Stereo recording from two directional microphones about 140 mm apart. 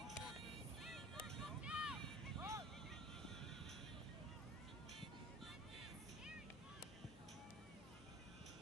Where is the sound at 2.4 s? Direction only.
20° right (ahead or behind).